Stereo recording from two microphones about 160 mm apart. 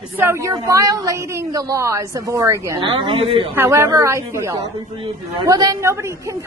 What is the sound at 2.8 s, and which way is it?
Speech, 30° right (ahead or behind).